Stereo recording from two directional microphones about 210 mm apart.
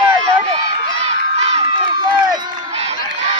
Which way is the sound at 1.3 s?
30° right (ahead or behind).